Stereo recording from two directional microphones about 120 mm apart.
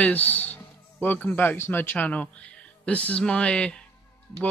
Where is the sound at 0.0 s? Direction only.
10° left (ahead or behind).